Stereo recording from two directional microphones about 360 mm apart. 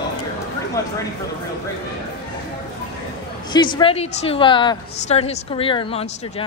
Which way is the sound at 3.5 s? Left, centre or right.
Centre.